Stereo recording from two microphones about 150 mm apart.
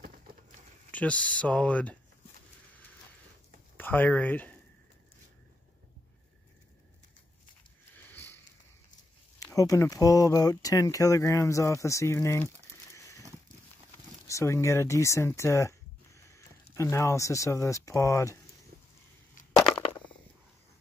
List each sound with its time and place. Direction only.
0.9 s speech: 10° left (ahead or behind)
3.7 s speech: 15° left (ahead or behind)
7.9 s sniff: 15° left (ahead or behind)
9.4 s speech: 20° left (ahead or behind)
12.9 s a sound: 20° left (ahead or behind)
14.2 s speech: 20° left (ahead or behind)
16.2 s a sound: 20° left (ahead or behind)
16.7 s speech: 20° left (ahead or behind)